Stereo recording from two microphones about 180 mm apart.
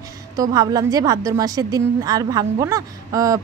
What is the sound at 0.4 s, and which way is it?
A woman's voice, 20° right (ahead or behind).